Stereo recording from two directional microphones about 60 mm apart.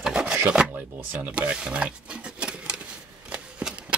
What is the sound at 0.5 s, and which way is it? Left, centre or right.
Speech, right.